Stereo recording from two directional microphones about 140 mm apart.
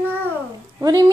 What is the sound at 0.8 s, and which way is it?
Speech, 25° right (ahead or behind).